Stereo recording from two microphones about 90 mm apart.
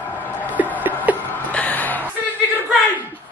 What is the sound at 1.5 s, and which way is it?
Music, 20° left (ahead or behind).